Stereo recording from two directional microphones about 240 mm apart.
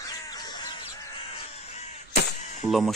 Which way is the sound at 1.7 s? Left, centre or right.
Left.